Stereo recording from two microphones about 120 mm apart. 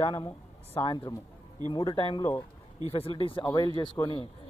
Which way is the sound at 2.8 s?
55° left (ahead or behind).